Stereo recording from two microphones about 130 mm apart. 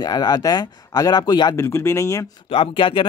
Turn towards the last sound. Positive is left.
turn(degrees=40)  # may be behind; listen again after turning